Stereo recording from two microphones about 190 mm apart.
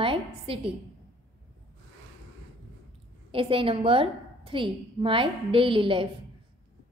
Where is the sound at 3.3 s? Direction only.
30° right (ahead or behind).